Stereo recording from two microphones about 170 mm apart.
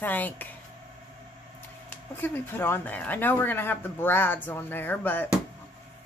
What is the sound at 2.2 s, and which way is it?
Speech, 10° left (ahead or behind).